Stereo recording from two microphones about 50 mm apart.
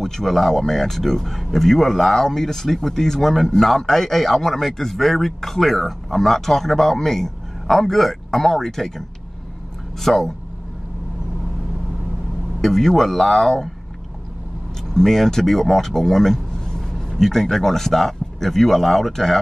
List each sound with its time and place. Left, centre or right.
0.0 s speech: centre
10.0 s speech: centre
12.6 s speech: centre
15.0 s speech: centre